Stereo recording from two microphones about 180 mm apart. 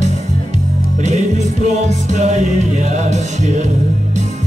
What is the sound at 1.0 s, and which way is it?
Music, 40° right (ahead or behind).